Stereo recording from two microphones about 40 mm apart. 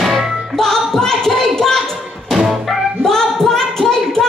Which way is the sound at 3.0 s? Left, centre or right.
Centre.